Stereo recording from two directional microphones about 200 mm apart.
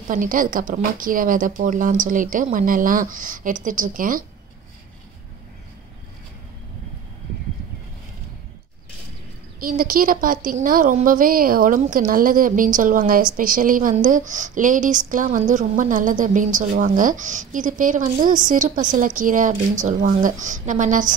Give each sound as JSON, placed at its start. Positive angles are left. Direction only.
{"t": 0.1, "sound": "a woman's voice", "side_deg": -45}
{"t": 9.6, "sound": "a woman's voice", "side_deg": -45}